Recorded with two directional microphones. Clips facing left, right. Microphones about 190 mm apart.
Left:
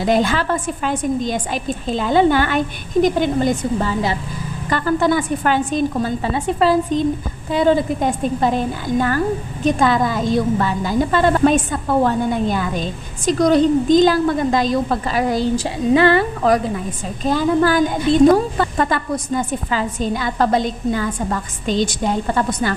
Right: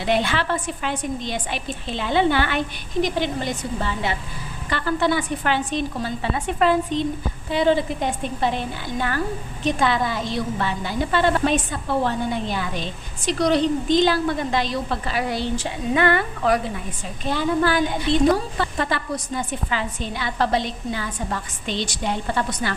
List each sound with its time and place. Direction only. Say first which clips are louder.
0.0 s a woman's voice: left 5 dB; 40° left (ahead or behind)
6.3 s a woman's voice: left 3 dB; 35° left (ahead or behind)